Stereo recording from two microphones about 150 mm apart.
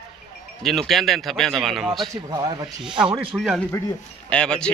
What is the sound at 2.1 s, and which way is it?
Speech, 25° right (ahead or behind).